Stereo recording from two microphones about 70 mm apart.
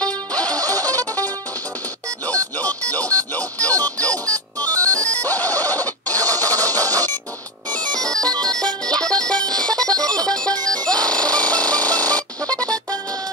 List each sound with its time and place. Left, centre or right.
0.0 s music: centre
0.6 s music: right
0.9 s music: left